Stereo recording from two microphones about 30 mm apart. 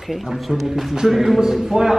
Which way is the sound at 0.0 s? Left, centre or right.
Centre.